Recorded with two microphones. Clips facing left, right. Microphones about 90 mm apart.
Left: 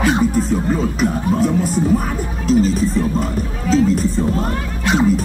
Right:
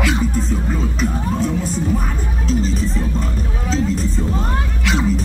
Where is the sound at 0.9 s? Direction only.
5° left (ahead or behind).